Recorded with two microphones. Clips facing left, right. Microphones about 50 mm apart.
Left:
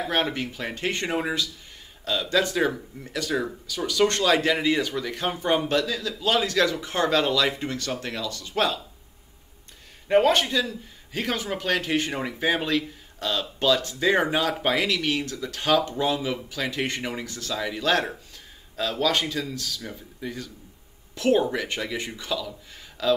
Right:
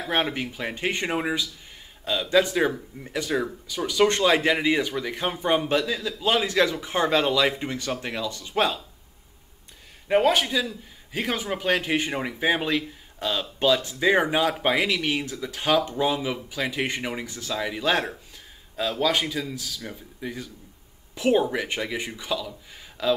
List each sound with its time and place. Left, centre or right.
0.1 s a man's voice: centre
10.0 s a man's voice: centre